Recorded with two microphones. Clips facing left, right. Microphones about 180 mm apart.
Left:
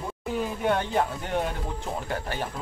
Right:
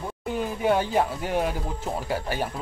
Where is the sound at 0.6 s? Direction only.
5° right (ahead or behind).